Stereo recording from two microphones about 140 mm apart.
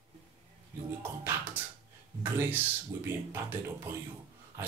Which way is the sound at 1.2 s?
10° right (ahead or behind).